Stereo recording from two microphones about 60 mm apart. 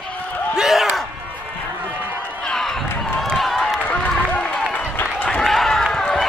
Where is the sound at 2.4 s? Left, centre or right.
Centre.